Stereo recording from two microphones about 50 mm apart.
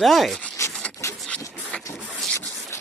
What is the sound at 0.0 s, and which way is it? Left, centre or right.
Speech, centre.